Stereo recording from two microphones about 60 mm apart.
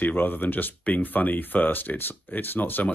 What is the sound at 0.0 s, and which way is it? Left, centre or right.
Speech, left.